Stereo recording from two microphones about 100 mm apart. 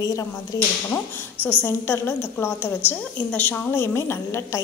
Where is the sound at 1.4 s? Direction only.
25° left (ahead or behind).